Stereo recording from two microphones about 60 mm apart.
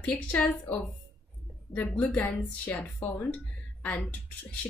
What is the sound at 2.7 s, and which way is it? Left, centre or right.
A woman's voice, left.